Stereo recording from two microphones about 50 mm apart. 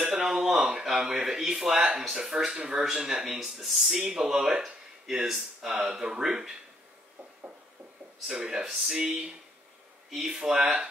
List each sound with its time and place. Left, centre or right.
0.1 s a sound: centre
0.7 s speech: centre
8.3 s speech: centre
8.6 s speech: centre